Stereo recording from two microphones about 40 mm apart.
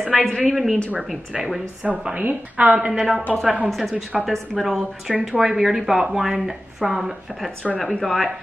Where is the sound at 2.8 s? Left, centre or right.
Centre.